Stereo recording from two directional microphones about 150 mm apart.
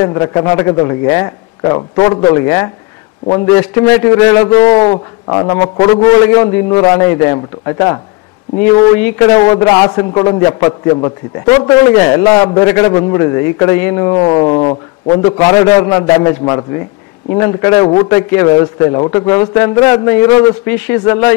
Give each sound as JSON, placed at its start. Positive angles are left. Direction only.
{"t": 0.0, "sound": "a man's voice", "side_deg": 25}